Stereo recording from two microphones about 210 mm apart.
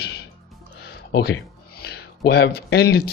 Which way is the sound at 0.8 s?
50° left (ahead or behind).